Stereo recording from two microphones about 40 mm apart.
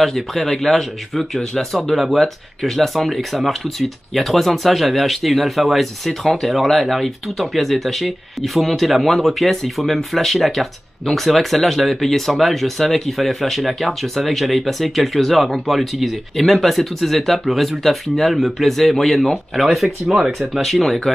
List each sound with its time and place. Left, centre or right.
0.0 s speech: centre
1.9 s speech: centre
20.1 s speech: centre
20.6 s speech: centre